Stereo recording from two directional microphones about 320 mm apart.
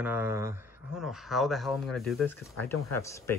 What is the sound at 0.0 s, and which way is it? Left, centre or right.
Speech, centre.